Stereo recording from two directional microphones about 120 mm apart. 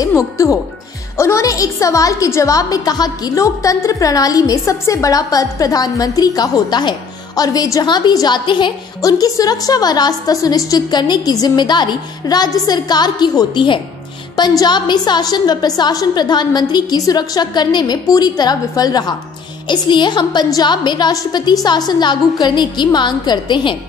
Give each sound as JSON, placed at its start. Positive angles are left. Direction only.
{"t": 0.0, "sound": "a woman's voice", "side_deg": 25}